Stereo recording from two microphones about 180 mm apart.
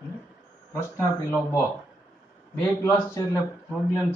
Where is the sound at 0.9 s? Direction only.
15° left (ahead or behind).